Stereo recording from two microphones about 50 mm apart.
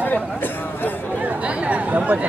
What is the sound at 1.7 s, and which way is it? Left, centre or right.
Chatter, right.